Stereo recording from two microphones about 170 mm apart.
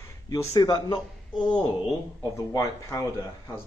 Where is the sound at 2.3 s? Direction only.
20° left (ahead or behind).